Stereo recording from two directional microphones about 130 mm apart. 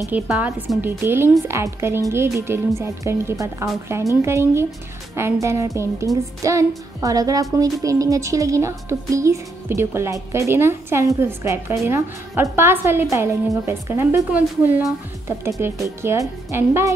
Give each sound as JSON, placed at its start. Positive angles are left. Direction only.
{"t": 0.3, "sound": "a woman's voice", "side_deg": -10}